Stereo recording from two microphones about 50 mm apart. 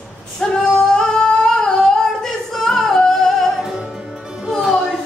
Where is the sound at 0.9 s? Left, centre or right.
Centre.